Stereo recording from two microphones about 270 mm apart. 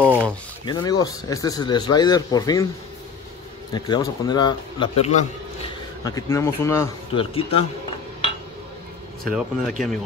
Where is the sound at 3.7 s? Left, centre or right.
Centre.